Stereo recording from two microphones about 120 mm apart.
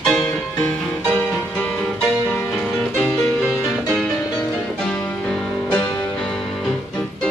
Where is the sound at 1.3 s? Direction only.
10° left (ahead or behind).